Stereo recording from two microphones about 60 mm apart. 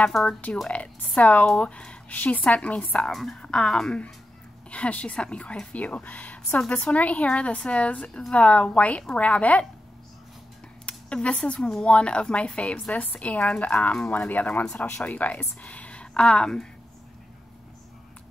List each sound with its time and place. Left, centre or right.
0.1 s speech: centre
0.7 s speech: left
3.1 s a woman's voice: centre; by 9.7 s left
10.9 s speech: centre
14.6 s speech: centre
15.0 s speech: left